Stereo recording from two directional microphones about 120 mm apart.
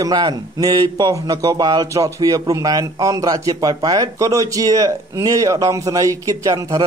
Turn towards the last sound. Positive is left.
turn(degrees=-30)  # may be behind; listen again after turning